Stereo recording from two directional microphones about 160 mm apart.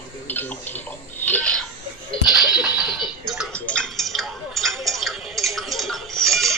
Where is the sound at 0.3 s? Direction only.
10° left (ahead or behind).